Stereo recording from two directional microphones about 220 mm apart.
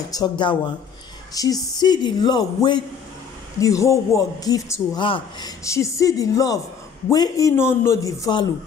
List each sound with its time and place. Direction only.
0.1 s a man's voice: 20° left (ahead or behind)